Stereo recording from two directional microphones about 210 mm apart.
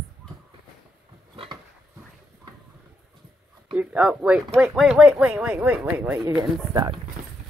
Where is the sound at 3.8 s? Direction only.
5° right (ahead or behind).